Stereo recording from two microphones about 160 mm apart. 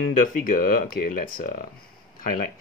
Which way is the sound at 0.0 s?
60° left (ahead or behind).